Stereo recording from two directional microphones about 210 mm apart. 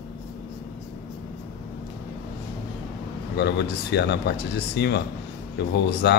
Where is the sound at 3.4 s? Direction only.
50° left (ahead or behind).